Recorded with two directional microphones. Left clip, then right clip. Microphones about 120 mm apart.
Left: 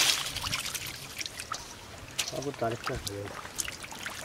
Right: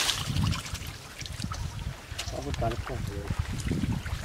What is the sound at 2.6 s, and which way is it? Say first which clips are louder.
Speech: even; 25° left (ahead or behind).